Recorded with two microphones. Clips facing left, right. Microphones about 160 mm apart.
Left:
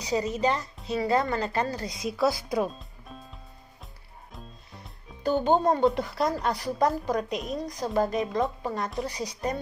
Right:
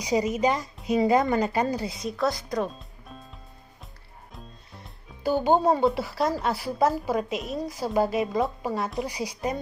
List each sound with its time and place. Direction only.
0.0 s a woman's voice: 10° right (ahead or behind)